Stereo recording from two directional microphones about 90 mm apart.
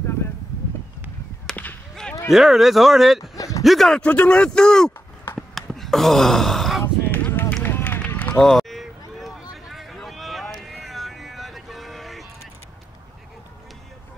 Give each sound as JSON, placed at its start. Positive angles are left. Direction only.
{"t": 1.5, "sound": "whip", "side_deg": 20}
{"t": 2.3, "sound": "speech", "side_deg": 0}
{"t": 3.3, "sound": "a sound", "side_deg": 40}
{"t": 3.6, "sound": "speech", "side_deg": 0}
{"t": 4.0, "sound": "speech", "side_deg": 15}
{"t": 5.5, "sound": "a sound", "side_deg": 0}
{"t": 7.1, "sound": "run", "side_deg": 20}
{"t": 8.4, "sound": "a sound", "side_deg": 5}
{"t": 10.7, "sound": "vehicle", "side_deg": 0}